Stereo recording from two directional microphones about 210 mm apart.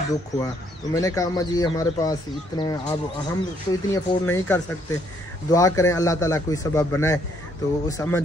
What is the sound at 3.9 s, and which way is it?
Speech, 10° left (ahead or behind).